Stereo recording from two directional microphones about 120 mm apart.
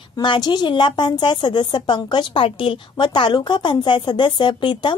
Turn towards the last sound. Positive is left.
turn(degrees=40)  # may be behind; listen again after turning